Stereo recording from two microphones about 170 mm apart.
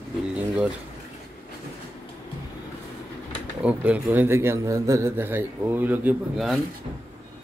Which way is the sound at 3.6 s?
10° right (ahead or behind).